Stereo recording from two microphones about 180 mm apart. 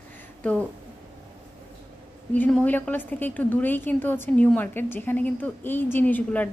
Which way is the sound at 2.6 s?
10° left (ahead or behind).